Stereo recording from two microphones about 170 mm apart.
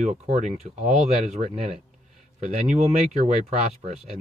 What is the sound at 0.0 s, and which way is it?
Speech, 45° right (ahead or behind).